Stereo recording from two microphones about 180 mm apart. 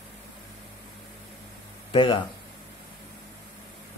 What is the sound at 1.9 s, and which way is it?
Speech, 30° left (ahead or behind).